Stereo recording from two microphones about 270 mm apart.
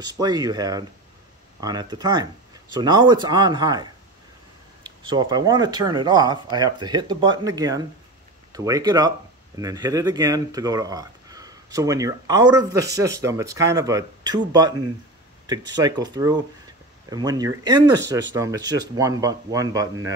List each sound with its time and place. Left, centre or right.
0.0 s speech: centre
5.0 s speech: centre